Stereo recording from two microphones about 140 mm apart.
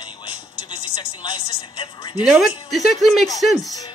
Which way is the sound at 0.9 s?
35° left (ahead or behind).